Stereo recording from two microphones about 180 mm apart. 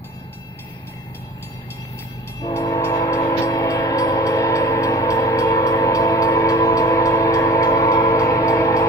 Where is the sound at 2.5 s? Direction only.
15° left (ahead or behind).